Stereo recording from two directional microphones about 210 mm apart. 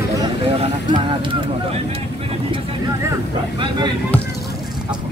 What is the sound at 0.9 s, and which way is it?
Speech, 25° right (ahead or behind).